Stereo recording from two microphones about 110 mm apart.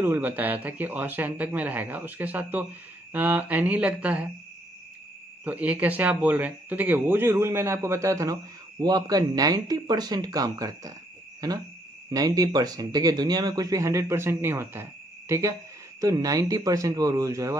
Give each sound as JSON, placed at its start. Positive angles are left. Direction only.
{"t": 0.0, "sound": "speech", "side_deg": -20}
{"t": 5.4, "sound": "speech", "side_deg": -15}